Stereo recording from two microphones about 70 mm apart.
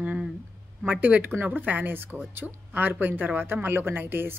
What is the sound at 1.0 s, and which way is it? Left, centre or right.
A woman's voice, right.